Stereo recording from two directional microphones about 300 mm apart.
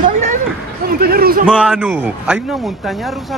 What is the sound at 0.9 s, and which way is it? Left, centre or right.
Speech, right.